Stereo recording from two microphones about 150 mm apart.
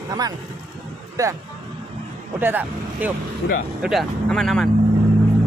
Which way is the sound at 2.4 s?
10° right (ahead or behind).